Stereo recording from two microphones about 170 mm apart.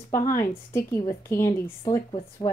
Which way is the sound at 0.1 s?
20° left (ahead or behind).